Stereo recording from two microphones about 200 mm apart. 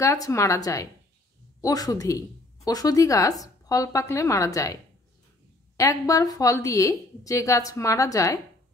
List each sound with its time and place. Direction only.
0.0 s speech: 15° left (ahead or behind)
5.8 s speech: 15° left (ahead or behind)